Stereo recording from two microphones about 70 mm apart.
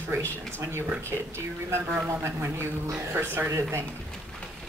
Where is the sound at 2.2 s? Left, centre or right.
Right.